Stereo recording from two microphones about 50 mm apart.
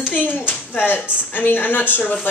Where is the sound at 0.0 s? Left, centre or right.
Left.